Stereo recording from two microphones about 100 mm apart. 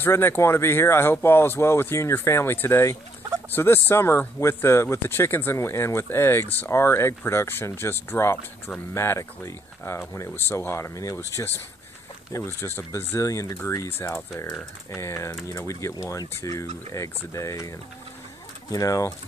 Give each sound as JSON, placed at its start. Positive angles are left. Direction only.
{"t": 0.0, "sound": "speech", "side_deg": 20}